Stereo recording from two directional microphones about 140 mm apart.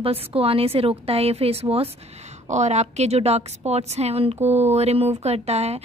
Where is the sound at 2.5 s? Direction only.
55° right (ahead or behind).